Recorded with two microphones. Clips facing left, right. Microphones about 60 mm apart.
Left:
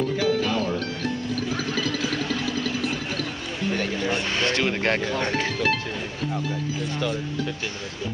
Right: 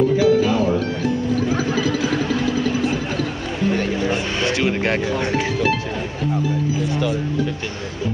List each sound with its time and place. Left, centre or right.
0.2 s music: centre